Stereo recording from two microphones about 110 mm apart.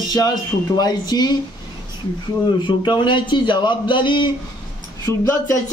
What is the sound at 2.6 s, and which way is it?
A man's voice, 45° left (ahead or behind).